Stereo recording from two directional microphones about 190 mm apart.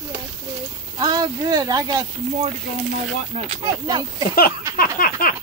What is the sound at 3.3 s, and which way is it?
Speech, 30° right (ahead or behind).